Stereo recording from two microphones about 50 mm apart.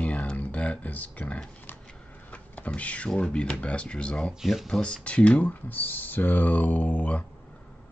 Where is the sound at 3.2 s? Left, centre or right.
Left.